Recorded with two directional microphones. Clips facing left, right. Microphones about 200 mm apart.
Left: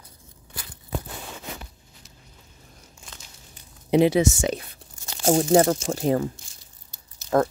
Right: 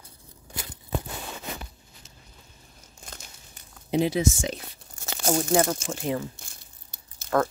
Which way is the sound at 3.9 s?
70° left (ahead or behind).